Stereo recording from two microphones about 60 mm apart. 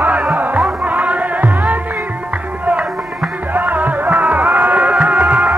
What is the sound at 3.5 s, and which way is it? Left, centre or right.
Music, right.